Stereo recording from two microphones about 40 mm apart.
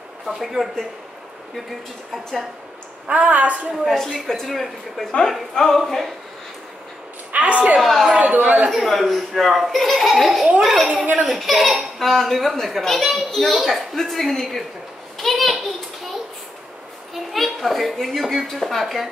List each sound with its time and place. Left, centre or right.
0.6 s a child's voice: centre
3.1 s a woman's voice: right
3.8 s a child's voice: centre
5.5 s a child's voice: centre
7.3 s a sound: right
7.8 s a child's voice: centre
8.2 s a woman's voice: right
8.7 s a child's voice: centre
15.2 s a sound: centre
17.1 s a child's voice: centre